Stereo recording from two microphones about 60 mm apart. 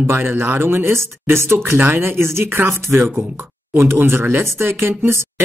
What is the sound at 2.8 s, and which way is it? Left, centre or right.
Speech, right.